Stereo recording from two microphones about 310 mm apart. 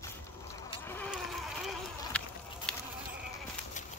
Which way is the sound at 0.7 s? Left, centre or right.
Centre.